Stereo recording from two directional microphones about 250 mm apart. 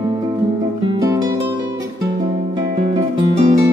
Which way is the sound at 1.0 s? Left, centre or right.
Centre.